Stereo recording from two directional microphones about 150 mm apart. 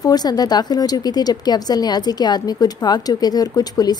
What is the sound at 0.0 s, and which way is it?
Speech, 25° left (ahead or behind).